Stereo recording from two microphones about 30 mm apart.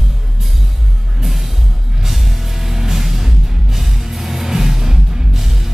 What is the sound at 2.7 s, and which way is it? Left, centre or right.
Music, centre.